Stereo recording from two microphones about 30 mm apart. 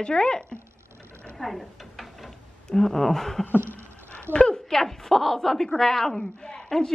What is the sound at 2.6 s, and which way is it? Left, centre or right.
Speech, centre.